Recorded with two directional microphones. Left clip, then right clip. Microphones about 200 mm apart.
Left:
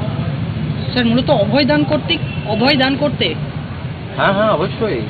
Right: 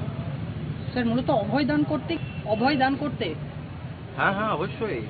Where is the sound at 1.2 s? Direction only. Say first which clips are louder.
Left 10 dB; centre (ahead or behind).